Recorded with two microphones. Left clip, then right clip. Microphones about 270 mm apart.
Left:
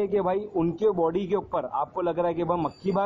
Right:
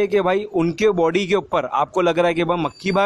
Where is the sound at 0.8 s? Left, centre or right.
Right.